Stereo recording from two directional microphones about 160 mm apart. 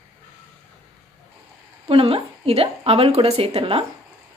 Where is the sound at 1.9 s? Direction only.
35° right (ahead or behind).